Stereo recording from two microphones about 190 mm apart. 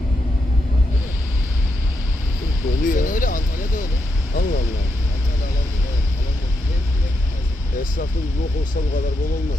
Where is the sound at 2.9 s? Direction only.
45° left (ahead or behind).